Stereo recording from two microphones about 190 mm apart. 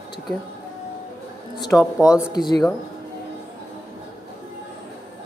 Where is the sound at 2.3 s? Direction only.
20° left (ahead or behind).